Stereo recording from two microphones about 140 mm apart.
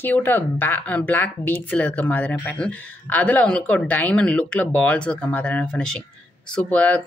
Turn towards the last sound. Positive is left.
turn(degrees=10)  # may be behind; listen again after turning